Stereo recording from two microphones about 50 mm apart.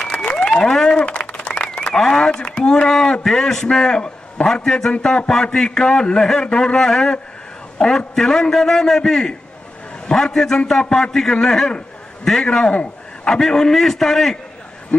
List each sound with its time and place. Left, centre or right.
0.1 s applause: left
0.5 s applause: centre
0.8 s a sound: left
2.4 s a man's voice: centre
13.2 s a man's voice: centre
14.9 s speech: left